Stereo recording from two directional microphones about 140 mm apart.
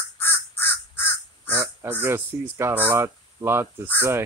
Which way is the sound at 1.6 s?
15° right (ahead or behind).